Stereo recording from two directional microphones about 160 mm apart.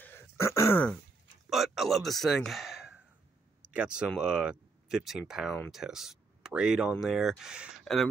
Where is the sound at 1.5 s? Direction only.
Centre (ahead or behind).